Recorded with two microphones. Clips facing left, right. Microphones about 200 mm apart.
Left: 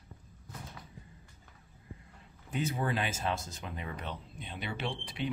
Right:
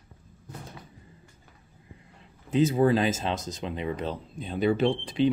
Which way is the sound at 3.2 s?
20° right (ahead or behind).